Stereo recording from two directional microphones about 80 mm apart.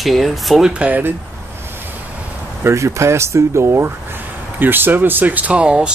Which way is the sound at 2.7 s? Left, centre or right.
Right.